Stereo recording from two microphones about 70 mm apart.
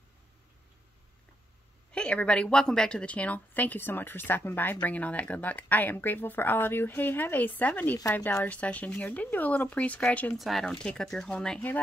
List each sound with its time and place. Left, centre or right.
1.9 s a woman's voice: centre
10.3 s speech: centre